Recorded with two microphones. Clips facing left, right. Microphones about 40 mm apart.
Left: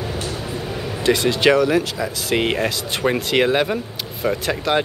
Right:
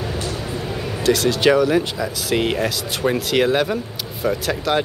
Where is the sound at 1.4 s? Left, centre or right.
Centre.